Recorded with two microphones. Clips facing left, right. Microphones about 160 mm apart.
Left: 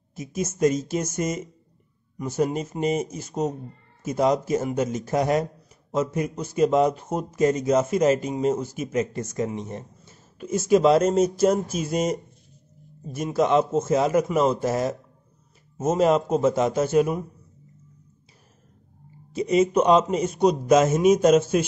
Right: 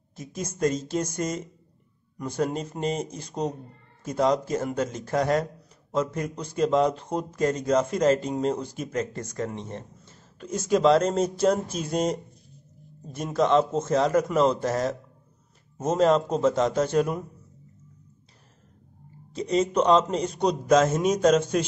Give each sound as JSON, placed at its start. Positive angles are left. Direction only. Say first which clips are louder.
{"t": 0.1, "sound": "a man's voice", "louder": "left 5 dB", "side_deg": 10}
{"t": 19.3, "sound": "a man's voice", "louder": "left 4 dB", "side_deg": 10}